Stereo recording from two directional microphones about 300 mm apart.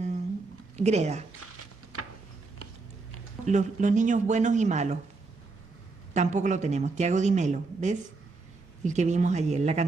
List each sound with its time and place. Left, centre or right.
0.7 s speech: right
1.4 s a sound: right
3.4 s speech: right
6.1 s speech: right